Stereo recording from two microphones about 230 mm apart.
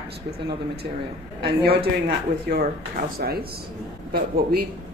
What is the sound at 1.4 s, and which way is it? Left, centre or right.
Speech, right.